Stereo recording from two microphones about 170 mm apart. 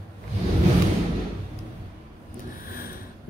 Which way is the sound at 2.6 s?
60° left (ahead or behind).